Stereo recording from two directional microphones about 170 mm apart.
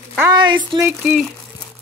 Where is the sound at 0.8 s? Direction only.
10° right (ahead or behind).